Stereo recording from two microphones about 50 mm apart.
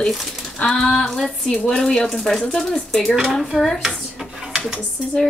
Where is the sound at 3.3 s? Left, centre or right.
Centre.